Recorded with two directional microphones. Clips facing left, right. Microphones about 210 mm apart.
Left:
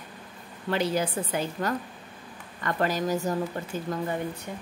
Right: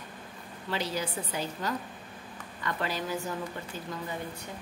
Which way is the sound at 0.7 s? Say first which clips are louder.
Left 6 dB; 55° left (ahead or behind).